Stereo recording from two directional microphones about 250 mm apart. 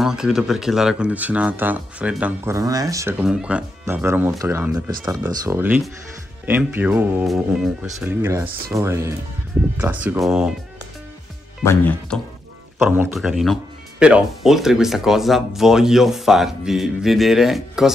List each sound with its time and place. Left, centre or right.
0.0 s speech: centre
11.6 s speech: centre
12.8 s speech: centre